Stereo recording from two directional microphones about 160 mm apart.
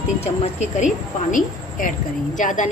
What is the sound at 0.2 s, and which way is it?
A woman's voice, 45° left (ahead or behind).